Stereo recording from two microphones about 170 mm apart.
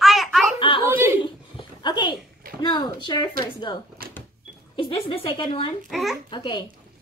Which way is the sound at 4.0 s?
60° right (ahead or behind).